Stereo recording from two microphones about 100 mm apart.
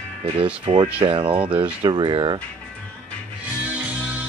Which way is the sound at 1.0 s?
60° right (ahead or behind).